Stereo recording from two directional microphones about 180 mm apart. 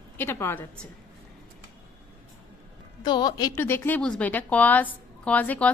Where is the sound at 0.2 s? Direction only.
15° left (ahead or behind).